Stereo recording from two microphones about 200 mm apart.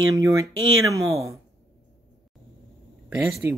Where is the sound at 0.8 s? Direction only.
15° right (ahead or behind).